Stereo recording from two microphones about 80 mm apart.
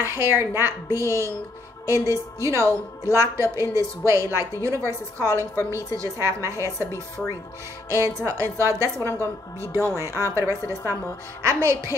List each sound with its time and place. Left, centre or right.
0.0 s a woman's voice: right
7.9 s a woman's voice: right